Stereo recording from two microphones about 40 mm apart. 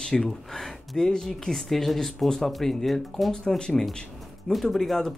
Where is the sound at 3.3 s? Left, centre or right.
Centre.